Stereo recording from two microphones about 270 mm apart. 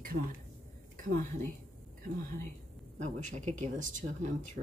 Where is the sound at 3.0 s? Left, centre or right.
Right.